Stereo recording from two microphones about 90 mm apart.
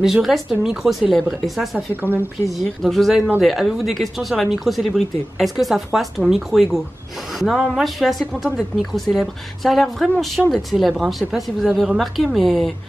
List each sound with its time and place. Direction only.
0.0 s speech: 5° right (ahead or behind)
2.0 s a woman's voice: 20° right (ahead or behind)
2.5 s speech: centre (ahead or behind)